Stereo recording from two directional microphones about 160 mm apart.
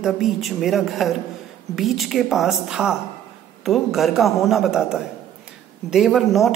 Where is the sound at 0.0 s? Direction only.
Centre (ahead or behind).